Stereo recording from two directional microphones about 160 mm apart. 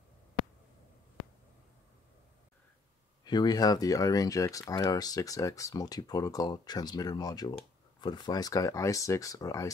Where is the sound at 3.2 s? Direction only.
25° left (ahead or behind).